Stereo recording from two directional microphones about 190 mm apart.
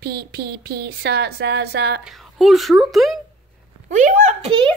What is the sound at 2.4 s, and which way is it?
Speech, centre (ahead or behind).